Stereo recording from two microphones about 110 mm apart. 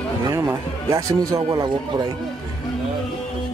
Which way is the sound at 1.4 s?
45° right (ahead or behind).